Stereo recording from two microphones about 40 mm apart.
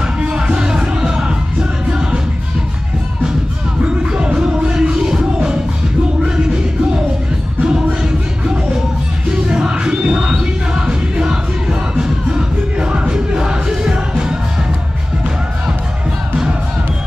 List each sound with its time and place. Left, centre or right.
0.2 s music: right
3.8 s music: right
9.3 s music: right